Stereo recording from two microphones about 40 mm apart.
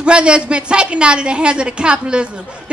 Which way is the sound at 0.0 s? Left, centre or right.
Right.